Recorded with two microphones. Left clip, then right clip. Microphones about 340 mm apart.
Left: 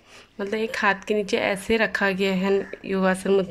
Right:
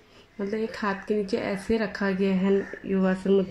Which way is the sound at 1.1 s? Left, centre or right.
Left.